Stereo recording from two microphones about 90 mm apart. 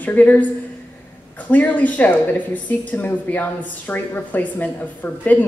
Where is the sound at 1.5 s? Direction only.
20° left (ahead or behind).